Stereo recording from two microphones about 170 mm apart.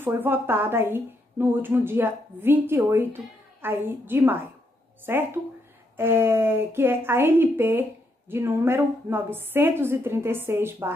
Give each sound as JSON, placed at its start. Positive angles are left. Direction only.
{"t": 0.0, "sound": "a woman's voice", "side_deg": -10}